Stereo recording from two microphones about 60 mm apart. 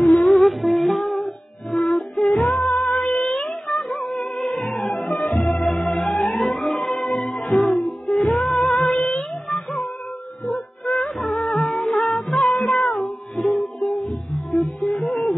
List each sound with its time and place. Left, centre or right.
0.0 s humming: centre
1.2 s music: centre
9.1 s child singing: centre
10.9 s music: centre
15.0 s a sound: left